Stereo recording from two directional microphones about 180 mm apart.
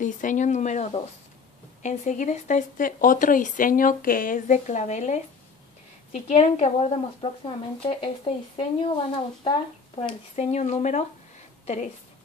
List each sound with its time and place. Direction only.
0.0 s speech: 45° left (ahead or behind); by 9.6 s 30° left (ahead or behind)
10.3 s a woman's voice: 40° left (ahead or behind)